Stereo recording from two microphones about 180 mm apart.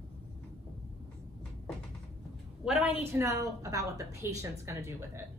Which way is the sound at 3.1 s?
15° right (ahead or behind).